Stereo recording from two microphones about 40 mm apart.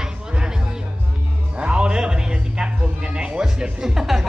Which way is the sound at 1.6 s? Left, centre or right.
Right.